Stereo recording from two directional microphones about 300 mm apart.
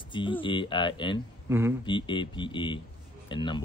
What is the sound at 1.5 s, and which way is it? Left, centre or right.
Speech, centre.